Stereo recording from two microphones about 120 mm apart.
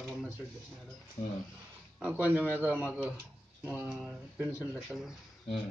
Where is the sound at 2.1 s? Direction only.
15° right (ahead or behind).